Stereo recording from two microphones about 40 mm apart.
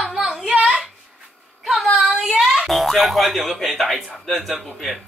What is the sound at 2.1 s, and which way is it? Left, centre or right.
Speech, centre.